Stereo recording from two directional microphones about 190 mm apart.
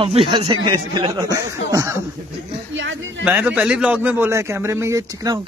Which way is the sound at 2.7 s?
80° right.